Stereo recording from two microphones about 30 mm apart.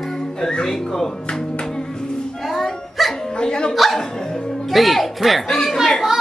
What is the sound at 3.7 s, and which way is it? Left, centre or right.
Speech, centre.